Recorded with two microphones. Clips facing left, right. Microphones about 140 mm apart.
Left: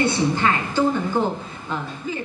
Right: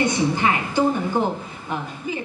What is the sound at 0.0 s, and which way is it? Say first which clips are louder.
Speech: even; 15° right (ahead or behind).